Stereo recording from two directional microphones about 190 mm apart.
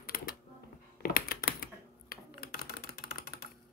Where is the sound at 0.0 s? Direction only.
50° left (ahead or behind).